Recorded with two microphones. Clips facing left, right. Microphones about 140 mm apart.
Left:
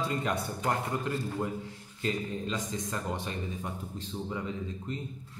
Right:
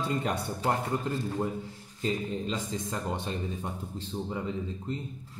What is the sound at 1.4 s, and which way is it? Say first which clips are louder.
Speech: right 3 dB; 15° right (ahead or behind).